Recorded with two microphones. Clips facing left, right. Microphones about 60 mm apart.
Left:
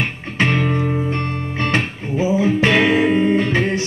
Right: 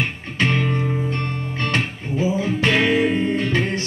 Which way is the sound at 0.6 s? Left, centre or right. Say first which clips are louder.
Left 3 dB; left.